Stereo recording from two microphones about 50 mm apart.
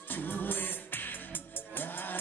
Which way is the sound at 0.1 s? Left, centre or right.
Left.